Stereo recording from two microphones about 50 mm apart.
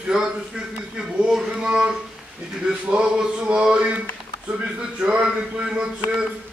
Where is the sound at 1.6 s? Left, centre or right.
Centre.